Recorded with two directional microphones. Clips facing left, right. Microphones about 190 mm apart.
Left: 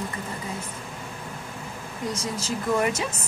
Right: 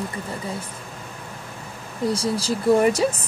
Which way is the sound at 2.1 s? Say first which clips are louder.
Right 6 dB; 35° right (ahead or behind).